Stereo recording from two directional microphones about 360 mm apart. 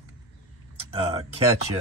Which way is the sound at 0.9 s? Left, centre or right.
Centre.